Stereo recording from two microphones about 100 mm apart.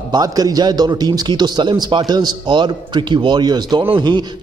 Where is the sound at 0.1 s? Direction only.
40° right (ahead or behind).